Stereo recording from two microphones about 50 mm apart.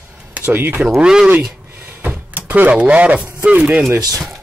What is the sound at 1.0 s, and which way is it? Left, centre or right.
Speech, centre.